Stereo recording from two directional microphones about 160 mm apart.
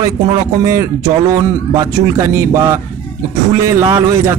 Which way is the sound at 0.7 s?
20° right (ahead or behind).